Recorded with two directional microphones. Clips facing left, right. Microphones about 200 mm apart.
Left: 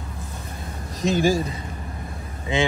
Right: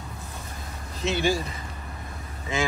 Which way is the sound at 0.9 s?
40° left (ahead or behind).